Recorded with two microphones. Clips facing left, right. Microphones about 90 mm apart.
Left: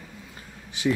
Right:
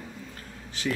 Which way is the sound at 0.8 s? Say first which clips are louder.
Left 6 dB; 15° left (ahead or behind).